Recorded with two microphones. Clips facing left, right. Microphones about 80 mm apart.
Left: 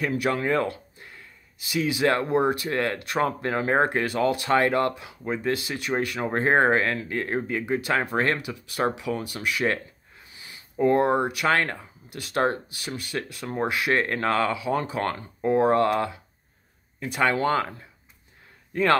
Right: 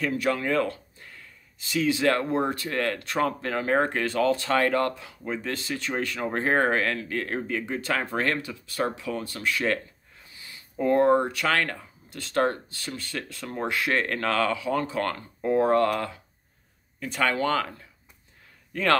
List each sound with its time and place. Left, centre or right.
0.0 s speech: left
0.7 s a sound: centre
1.6 s speech: centre
10.3 s a sound: centre
11.4 s speech: left
12.1 s speech: centre